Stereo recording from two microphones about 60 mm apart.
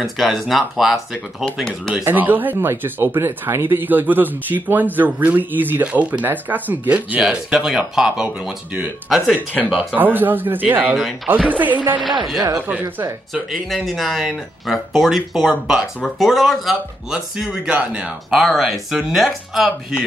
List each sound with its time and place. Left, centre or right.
0.0 s speech: centre
2.0 s speech: right
7.2 s speech: centre
9.8 s speech: right
12.0 s speech: centre
12.5 s speech: right
13.3 s speech: centre
17.1 s speech: centre
18.5 s speech: centre